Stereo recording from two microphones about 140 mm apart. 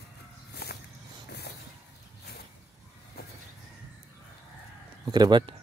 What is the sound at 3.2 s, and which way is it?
Vehicle, 90° left.